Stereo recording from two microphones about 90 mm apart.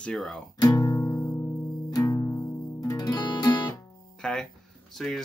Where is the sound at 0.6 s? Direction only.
45° left (ahead or behind).